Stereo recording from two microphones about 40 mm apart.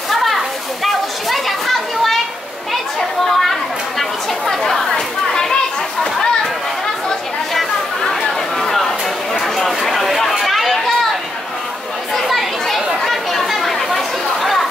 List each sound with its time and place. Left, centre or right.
0.1 s children playing: centre
2.7 s chatter: centre
4.9 s children playing: centre
8.0 s chatter: centre
13.1 s chatter: centre